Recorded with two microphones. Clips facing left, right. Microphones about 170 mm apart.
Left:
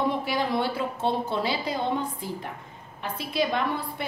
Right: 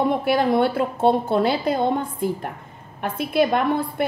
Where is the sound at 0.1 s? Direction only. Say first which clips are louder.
Right 8 dB; 55° right (ahead or behind).